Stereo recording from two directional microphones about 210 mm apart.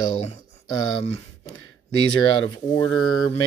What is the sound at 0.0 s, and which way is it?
Mantra, 25° left (ahead or behind).